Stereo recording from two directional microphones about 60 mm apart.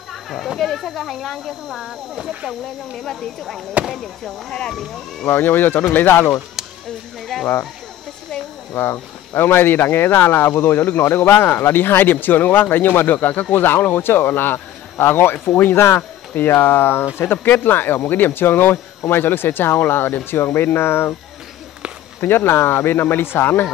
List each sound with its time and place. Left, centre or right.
0.1 s a sound: centre
0.6 s speech: centre
4.5 s speech: centre
5.2 s speech: left
7.3 s speech: centre
8.7 s speech: left
16.0 s speech: left
22.2 s speech: left